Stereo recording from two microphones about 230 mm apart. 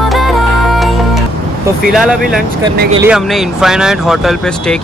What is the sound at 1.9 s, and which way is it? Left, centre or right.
Speech, centre.